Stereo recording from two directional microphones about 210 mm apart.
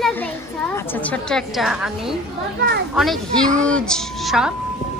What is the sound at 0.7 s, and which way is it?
A woman's voice, 10° left (ahead or behind).